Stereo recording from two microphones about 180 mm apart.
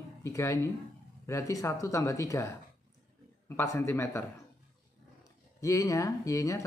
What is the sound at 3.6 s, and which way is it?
Speech, 15° left (ahead or behind).